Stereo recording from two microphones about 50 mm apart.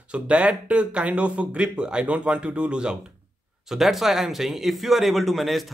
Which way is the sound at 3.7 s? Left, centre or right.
Centre.